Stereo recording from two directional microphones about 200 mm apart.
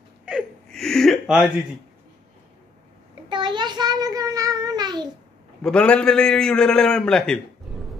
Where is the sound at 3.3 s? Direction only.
25° right (ahead or behind).